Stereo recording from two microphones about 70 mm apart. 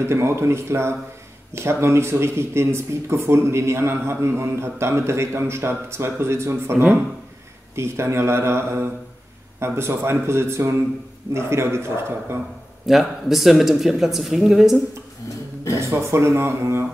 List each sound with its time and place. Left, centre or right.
0.0 s speech: right
12.8 s speech: centre
15.8 s speech: right